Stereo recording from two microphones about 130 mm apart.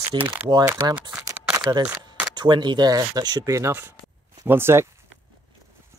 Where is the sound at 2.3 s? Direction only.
35° right (ahead or behind); by 4.8 s 20° right (ahead or behind).